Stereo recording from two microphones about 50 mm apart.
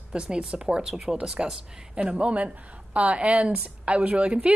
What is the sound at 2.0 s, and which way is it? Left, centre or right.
A woman's voice, right.